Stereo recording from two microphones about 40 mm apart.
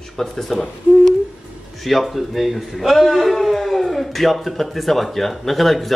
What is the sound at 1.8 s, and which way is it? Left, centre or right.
A man's voice, centre.